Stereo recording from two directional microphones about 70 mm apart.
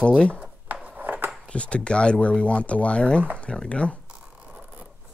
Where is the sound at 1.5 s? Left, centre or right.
Centre.